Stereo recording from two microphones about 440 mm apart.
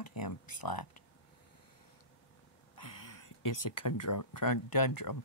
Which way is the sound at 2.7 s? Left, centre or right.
Left.